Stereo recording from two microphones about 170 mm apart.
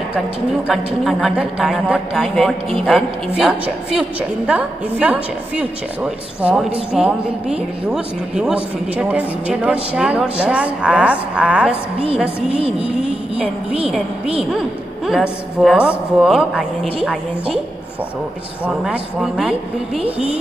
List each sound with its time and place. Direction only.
0.7 s a woman's voice: centre (ahead or behind)
12.4 s music: 35° right (ahead or behind)
13.8 s speech: centre (ahead or behind)
18.7 s speech: 5° right (ahead or behind)